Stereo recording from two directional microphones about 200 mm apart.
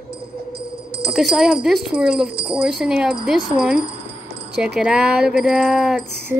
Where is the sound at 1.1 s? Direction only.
Centre (ahead or behind).